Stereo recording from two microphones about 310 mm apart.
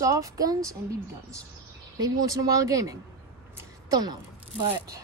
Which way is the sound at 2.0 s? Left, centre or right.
Centre.